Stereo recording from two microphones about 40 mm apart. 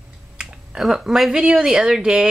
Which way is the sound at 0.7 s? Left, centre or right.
Centre.